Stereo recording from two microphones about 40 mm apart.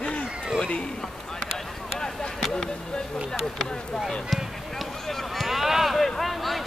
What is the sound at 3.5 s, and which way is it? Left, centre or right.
Speech, centre.